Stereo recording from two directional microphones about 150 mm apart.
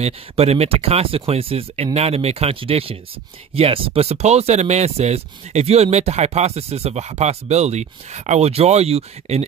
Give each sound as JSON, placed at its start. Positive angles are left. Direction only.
{"t": 0.0, "sound": "speech", "side_deg": -45}